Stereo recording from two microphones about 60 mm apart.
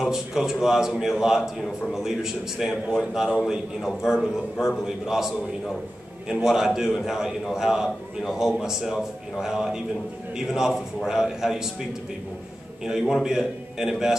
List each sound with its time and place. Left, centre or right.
0.0 s a man's voice: centre
13.1 s a man's voice: centre